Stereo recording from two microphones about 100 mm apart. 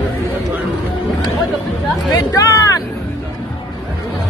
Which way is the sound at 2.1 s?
35° left (ahead or behind).